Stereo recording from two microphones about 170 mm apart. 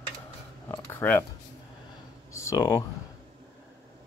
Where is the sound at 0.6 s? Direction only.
15° left (ahead or behind).